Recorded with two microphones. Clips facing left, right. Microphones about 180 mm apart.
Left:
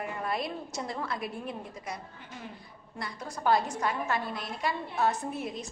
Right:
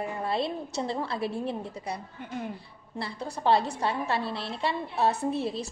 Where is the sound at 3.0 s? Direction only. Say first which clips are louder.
Right 3 dB; 30° right (ahead or behind).